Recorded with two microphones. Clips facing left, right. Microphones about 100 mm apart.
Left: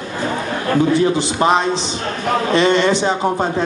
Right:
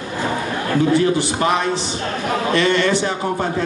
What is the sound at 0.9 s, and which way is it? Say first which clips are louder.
A man's voice: left 1 dB; 20° left (ahead or behind).